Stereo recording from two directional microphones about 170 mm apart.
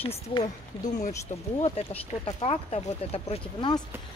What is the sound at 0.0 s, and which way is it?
Speech, 30° left (ahead or behind).